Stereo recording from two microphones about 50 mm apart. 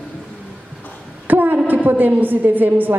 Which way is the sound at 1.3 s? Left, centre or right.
Right.